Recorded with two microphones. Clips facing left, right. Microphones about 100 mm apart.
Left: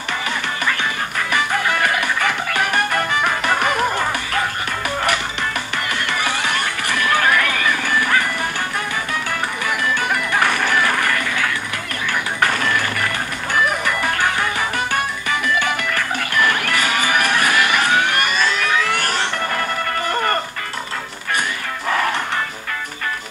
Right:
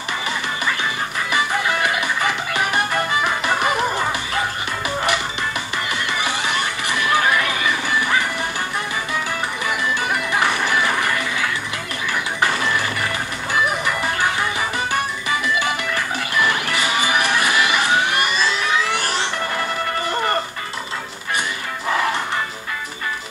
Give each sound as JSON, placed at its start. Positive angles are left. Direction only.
{"t": 1.3, "sound": "music", "side_deg": 50}
{"t": 3.5, "sound": "music", "side_deg": -5}
{"t": 6.4, "sound": "music", "side_deg": 50}
{"t": 16.4, "sound": "children shouting", "side_deg": 50}